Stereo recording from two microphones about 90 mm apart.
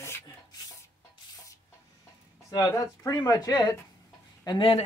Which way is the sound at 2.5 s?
40° left (ahead or behind).